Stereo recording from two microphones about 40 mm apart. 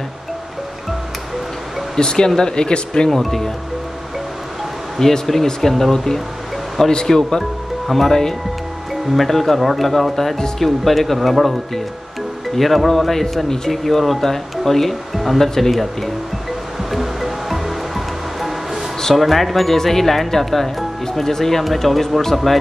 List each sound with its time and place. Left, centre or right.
2.0 s speech: centre
3.1 s speech: centre
4.9 s speech: centre
16.9 s music: centre
18.9 s speech: centre